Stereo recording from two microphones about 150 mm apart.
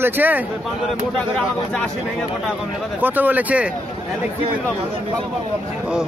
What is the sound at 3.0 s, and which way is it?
Speech, 10° right (ahead or behind).